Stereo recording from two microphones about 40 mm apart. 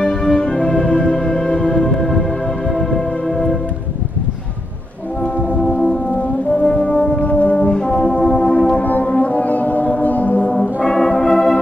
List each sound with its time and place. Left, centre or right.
0.1 s music: centre
2.7 s music: centre
5.6 s music: left
7.2 s brass instrument: left
7.5 s brass instrument: left
8.7 s music: left
10.0 s a sound: left
10.5 s brass instrument: centre